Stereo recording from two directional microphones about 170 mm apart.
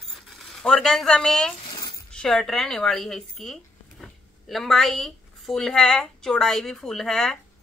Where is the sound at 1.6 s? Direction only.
25° left (ahead or behind).